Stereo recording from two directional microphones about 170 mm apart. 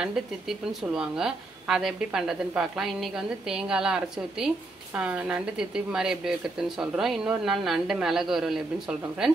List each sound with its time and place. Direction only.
0.0 s a woman's voice: 5° right (ahead or behind)